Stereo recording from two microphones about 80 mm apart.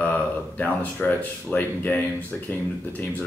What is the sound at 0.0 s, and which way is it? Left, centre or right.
Speech, left.